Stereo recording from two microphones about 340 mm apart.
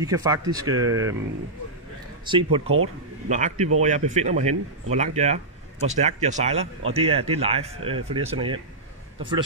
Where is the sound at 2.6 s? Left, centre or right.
Right.